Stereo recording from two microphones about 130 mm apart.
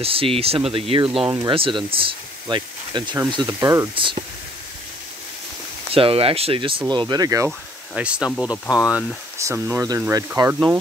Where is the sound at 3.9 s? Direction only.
40° right (ahead or behind).